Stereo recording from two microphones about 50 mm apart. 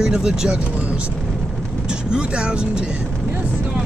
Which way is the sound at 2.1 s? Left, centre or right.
Centre.